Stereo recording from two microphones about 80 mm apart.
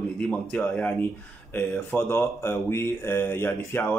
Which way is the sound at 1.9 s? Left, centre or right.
Left.